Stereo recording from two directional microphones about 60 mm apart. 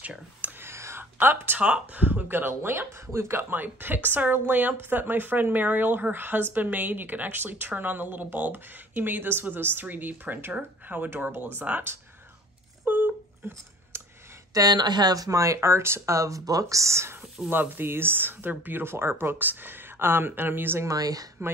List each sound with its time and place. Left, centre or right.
0.0 s a sound: right
0.6 s whispering: right
1.1 s speech: right
1.6 s speech: right
12.8 s a sound: right
13.4 s speech: right
13.9 s a sound: right
14.5 s speech: right
16.2 s speech: right
17.5 s speech: right
20.8 s speech: right